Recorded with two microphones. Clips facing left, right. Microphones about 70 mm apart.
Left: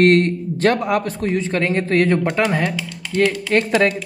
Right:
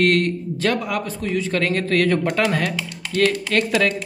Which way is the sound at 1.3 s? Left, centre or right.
Left.